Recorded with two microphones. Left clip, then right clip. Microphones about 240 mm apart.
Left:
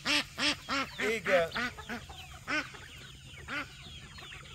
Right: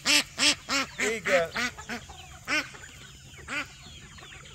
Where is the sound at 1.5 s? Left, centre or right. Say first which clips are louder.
Right 4 dB; right.